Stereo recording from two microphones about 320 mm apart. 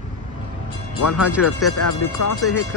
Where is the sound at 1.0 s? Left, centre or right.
Left.